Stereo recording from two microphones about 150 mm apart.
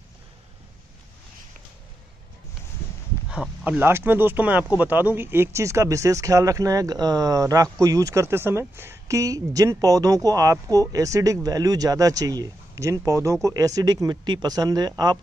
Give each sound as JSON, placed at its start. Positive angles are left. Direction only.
{"t": 3.3, "sound": "speech", "side_deg": -10}